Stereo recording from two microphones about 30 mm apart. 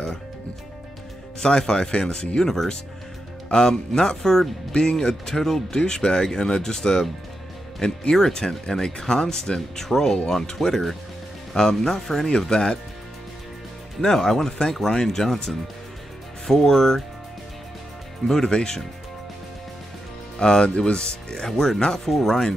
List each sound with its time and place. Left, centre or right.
1.7 s speech: left
14.0 s speech: centre
18.2 s speech: centre
20.3 s speech: left
20.7 s speech: left
21.0 s speech: left